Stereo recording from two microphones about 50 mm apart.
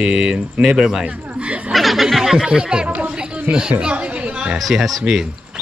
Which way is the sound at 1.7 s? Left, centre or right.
Centre.